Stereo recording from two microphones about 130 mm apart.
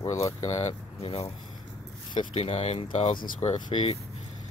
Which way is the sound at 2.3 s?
55° left (ahead or behind).